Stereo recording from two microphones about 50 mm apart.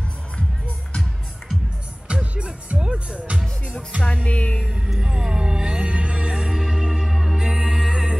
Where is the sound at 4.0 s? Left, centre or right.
Left.